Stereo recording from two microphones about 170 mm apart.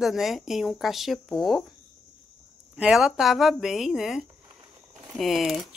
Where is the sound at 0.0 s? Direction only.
Centre (ahead or behind).